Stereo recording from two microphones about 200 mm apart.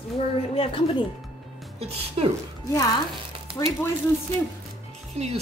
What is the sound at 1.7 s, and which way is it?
Speech, 30° right (ahead or behind).